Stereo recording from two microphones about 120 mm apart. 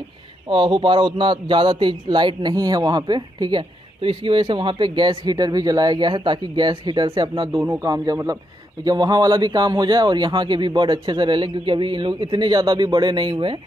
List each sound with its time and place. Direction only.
0.5 s a man's voice: 45° right (ahead or behind)